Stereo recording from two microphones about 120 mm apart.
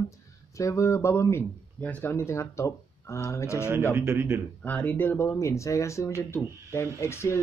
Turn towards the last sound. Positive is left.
turn(degrees=20)  # may be behind; listen again after turning